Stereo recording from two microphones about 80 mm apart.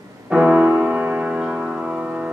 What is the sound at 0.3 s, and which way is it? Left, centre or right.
Music, centre.